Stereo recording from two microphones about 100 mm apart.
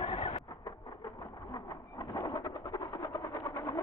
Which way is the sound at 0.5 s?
35° left (ahead or behind).